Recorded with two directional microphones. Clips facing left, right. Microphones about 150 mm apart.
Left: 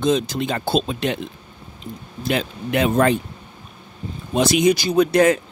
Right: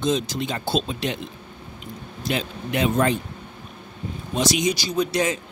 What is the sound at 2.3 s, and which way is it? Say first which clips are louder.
Speech: left 4 dB; 60° left (ahead or behind).